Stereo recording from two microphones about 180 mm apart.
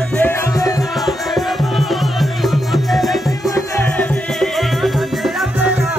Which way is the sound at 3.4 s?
15° left (ahead or behind).